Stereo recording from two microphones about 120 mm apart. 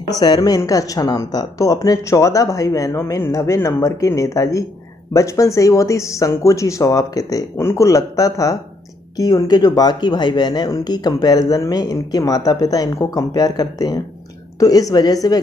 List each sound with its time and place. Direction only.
0.1 s speech: 35° left (ahead or behind)